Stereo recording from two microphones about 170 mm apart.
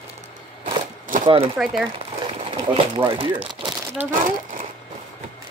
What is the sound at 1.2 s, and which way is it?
Speech, 30° right (ahead or behind).